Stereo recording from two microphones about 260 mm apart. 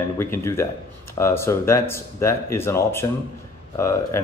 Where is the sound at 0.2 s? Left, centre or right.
Centre.